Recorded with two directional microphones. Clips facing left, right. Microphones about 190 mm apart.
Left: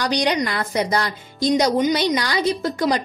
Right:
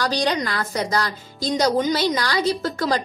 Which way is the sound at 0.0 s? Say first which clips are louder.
Left 2 dB; 15° left (ahead or behind).